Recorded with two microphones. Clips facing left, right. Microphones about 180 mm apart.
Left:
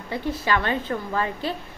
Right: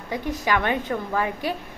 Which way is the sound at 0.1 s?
15° right (ahead or behind).